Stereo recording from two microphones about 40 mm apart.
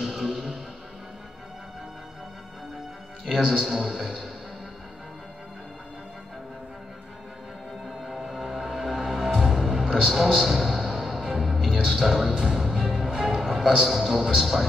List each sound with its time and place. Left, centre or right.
0.2 s music: centre
3.3 s a man's voice: centre
7.8 s music: centre
9.5 s music: centre
13.8 s a man's voice: centre